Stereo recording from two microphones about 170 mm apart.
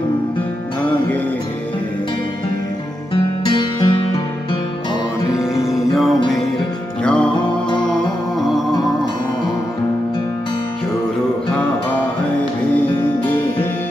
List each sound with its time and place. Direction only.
3.4 s music: 25° left (ahead or behind)
7.0 s music: 5° left (ahead or behind)